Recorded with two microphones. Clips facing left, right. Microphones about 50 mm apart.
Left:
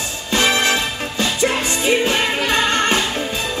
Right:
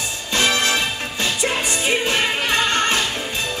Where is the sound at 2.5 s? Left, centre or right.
Left.